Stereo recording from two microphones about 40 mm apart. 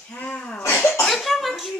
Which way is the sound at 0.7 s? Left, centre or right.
Left.